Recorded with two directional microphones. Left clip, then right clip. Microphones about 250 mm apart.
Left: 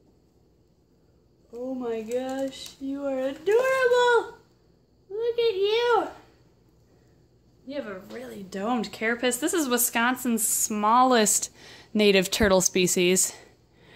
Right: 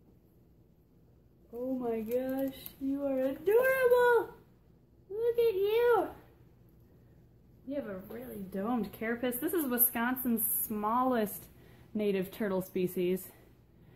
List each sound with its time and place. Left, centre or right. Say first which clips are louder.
1.8 s a child's voice: left 5 dB; centre
8.5 s speech: left 7 dB; left